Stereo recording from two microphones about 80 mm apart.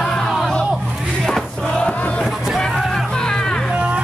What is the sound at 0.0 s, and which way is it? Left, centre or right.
Crowd, centre.